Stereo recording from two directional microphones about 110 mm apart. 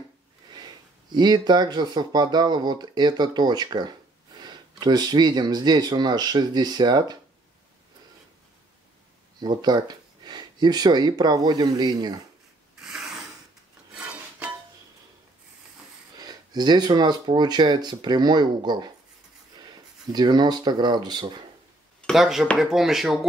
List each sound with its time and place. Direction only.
1.1 s speech: 40° right (ahead or behind)
9.4 s speech: 40° right (ahead or behind)
12.8 s filing: 5° right (ahead or behind)
16.2 s speech: 40° right (ahead or behind)
22.0 s speech: 5° right (ahead or behind)